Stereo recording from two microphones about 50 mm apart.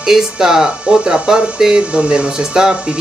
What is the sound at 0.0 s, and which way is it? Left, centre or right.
Speech, centre.